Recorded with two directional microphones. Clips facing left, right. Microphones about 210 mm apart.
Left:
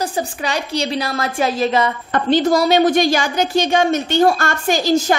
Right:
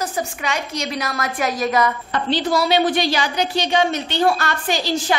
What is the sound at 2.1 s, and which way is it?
A woman's voice, 45° left (ahead or behind).